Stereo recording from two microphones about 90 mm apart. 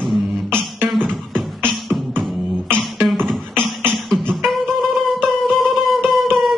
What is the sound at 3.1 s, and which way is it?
Beatboxing, 5° left (ahead or behind).